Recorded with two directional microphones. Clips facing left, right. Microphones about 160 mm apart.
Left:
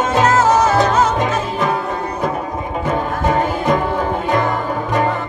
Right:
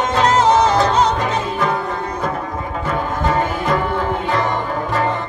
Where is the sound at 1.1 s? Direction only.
20° left (ahead or behind).